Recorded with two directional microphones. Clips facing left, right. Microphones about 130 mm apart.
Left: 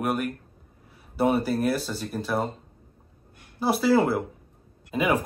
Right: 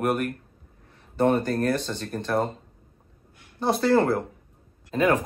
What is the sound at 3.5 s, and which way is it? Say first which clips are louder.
Speech: even; 5° left (ahead or behind).